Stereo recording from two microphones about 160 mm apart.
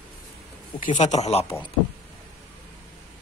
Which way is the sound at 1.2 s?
40° left (ahead or behind).